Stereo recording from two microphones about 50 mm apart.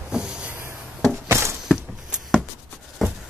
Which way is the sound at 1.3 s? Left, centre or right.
Right.